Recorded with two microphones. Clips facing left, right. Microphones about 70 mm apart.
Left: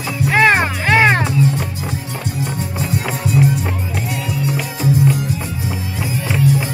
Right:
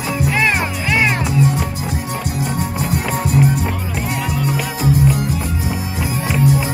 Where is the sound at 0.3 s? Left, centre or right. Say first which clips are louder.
Left 7 dB; left.